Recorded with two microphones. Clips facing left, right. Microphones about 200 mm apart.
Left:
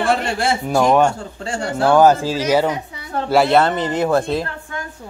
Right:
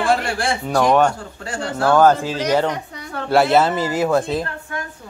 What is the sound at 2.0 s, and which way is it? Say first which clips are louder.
Speech: left 1 dB; 5° left (ahead or behind).